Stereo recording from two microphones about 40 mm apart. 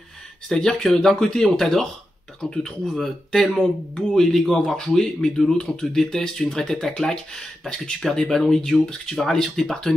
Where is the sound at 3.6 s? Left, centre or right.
Centre.